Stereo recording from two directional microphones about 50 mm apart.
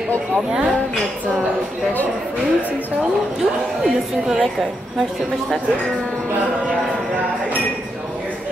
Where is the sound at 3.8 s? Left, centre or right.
Centre.